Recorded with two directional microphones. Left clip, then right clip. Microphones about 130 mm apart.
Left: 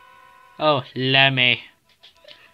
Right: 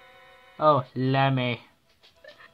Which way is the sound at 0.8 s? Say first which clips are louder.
Left 8 dB; 40° left (ahead or behind).